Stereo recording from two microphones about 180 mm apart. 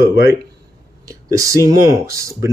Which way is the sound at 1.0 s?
20° right (ahead or behind).